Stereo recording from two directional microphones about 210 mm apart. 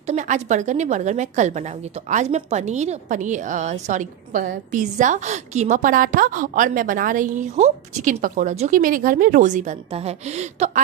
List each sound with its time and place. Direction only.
0.0 s a woman's voice: 35° right (ahead or behind)